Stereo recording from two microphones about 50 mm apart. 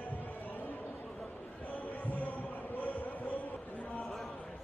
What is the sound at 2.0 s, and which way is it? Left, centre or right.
Heart sounds, left.